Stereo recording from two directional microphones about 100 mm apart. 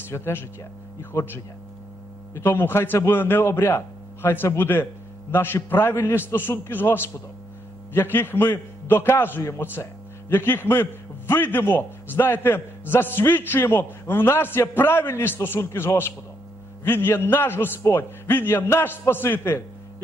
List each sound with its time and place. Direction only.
0.1 s a man's voice: 25° left (ahead or behind)